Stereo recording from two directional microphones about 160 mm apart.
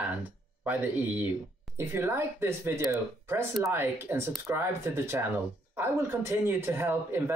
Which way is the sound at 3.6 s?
15° right (ahead or behind).